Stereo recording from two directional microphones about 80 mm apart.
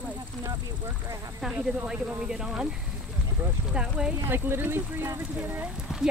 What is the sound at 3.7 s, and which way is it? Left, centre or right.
Speech, centre.